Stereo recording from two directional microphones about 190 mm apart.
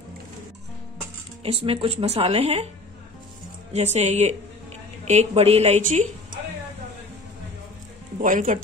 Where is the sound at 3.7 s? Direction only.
35° right (ahead or behind).